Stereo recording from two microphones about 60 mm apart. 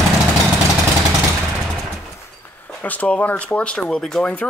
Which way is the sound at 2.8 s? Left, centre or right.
Left.